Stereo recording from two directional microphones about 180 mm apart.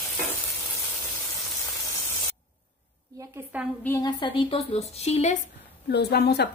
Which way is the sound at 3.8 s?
15° left (ahead or behind).